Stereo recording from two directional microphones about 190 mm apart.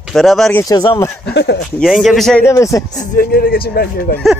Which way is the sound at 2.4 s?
15° left (ahead or behind).